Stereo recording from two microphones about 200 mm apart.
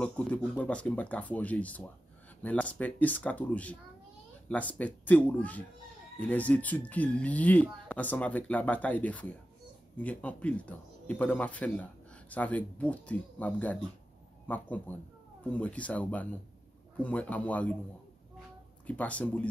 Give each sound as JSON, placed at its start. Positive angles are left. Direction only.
{"t": 0.0, "sound": "speech", "side_deg": 5}
{"t": 18.9, "sound": "speech", "side_deg": 5}